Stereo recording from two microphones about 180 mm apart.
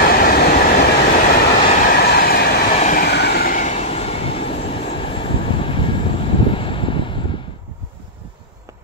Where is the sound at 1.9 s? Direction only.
60° left (ahead or behind); by 4.6 s 30° left (ahead or behind).